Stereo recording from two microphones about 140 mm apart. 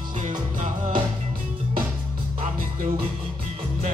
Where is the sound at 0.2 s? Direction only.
60° right (ahead or behind).